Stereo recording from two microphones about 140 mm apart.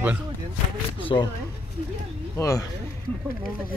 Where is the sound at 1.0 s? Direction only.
35° left (ahead or behind).